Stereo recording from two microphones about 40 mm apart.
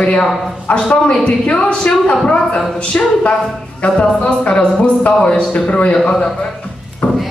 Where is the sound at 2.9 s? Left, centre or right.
Left.